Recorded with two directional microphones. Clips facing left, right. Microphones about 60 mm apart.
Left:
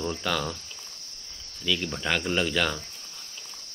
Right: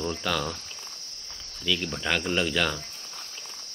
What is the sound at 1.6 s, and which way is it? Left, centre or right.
Speech, centre.